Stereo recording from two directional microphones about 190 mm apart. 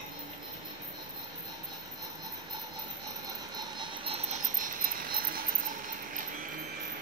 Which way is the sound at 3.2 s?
20° right (ahead or behind).